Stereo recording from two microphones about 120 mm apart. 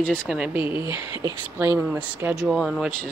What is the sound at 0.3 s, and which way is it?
Speech, 5° right (ahead or behind).